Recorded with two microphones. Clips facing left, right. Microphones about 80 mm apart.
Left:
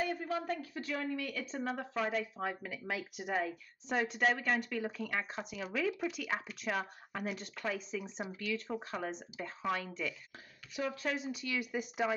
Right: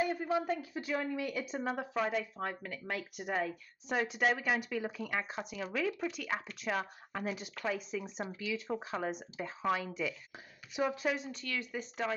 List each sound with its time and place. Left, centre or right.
0.0 s speech: centre
10.7 s speech: right
11.1 s speech: centre